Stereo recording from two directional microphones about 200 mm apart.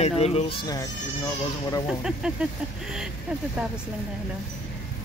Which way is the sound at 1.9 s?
5° right (ahead or behind).